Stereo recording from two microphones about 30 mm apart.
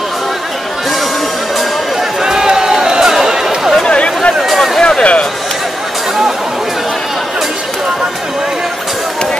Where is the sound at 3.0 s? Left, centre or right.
Centre.